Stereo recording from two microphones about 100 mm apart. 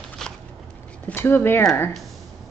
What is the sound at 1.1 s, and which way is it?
Speech, 20° left (ahead or behind).